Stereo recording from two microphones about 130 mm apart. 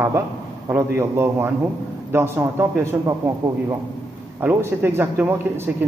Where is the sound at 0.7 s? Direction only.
20° right (ahead or behind).